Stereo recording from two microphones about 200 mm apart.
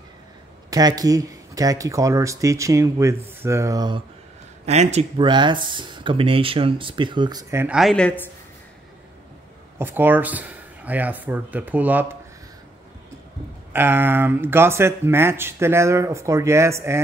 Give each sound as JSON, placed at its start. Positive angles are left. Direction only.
{"t": 0.7, "sound": "speech", "side_deg": -20}
{"t": 4.6, "sound": "speech", "side_deg": -35}
{"t": 7.6, "sound": "a woman's voice", "side_deg": 0}
{"t": 9.8, "sound": "speech", "side_deg": -10}
{"t": 13.7, "sound": "speech", "side_deg": -10}